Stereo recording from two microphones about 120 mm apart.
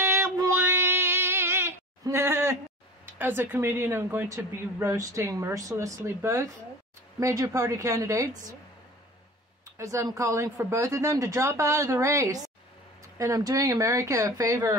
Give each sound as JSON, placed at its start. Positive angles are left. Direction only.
{"t": 0.0, "sound": "female singing", "side_deg": -20}
{"t": 3.1, "sound": "speech", "side_deg": -15}
{"t": 9.8, "sound": "speech", "side_deg": -25}